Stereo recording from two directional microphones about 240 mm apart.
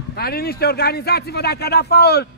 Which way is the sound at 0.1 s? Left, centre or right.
Left.